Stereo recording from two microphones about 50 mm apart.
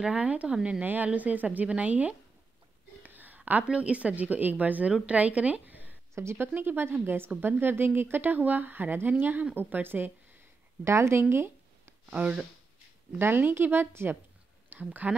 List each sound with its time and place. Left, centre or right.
0.0 s a woman's voice: right
3.0 s a sound: right
3.6 s a woman's voice: right
10.8 s speech: right
12.1 s a woman's voice: right
13.2 s a woman's voice: right
14.9 s a woman's voice: right